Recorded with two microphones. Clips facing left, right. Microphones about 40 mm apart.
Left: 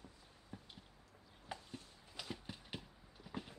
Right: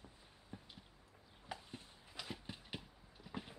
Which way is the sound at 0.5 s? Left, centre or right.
Centre.